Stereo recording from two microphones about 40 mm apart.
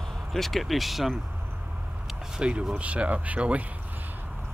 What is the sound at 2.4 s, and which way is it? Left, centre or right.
Speech, right.